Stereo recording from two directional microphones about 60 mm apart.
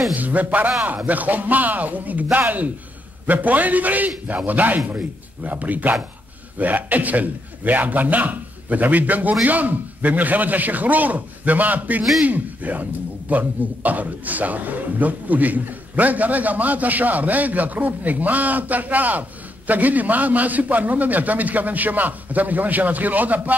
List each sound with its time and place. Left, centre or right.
0.1 s a man's voice: right